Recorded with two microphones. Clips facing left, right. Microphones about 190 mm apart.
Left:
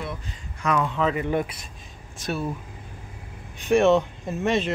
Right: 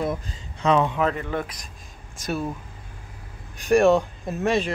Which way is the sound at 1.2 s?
15° left (ahead or behind).